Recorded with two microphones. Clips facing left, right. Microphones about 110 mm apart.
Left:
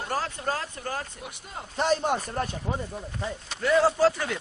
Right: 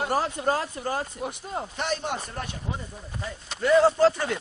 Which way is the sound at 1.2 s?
35° right (ahead or behind).